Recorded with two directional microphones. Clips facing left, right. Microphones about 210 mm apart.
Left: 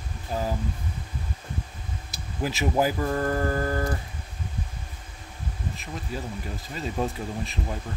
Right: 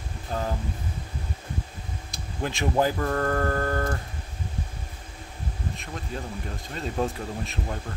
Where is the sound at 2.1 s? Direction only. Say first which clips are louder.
Left 1 dB; 5° left (ahead or behind).